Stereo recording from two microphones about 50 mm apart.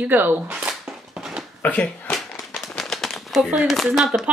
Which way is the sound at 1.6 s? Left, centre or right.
Left.